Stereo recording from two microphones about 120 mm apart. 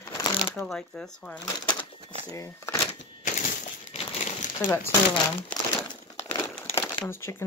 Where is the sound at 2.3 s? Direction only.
25° left (ahead or behind).